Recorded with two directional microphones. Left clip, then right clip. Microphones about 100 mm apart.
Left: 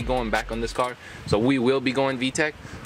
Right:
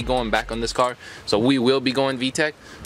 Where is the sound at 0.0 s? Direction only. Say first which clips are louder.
Right 3 dB; 20° right (ahead or behind).